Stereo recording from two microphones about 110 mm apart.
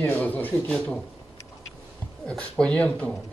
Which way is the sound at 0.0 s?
15° left (ahead or behind).